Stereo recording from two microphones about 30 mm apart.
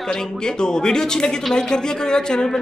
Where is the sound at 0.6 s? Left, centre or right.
Left.